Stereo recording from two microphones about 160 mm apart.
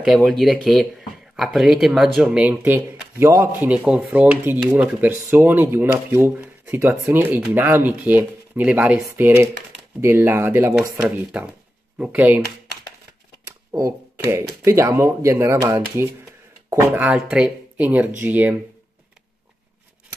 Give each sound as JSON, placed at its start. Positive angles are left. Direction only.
{"t": 0.0, "sound": "speech", "side_deg": 0}
{"t": 13.7, "sound": "speech", "side_deg": -20}